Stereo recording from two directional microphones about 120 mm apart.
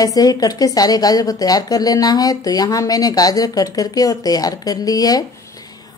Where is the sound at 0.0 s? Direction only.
30° left (ahead or behind).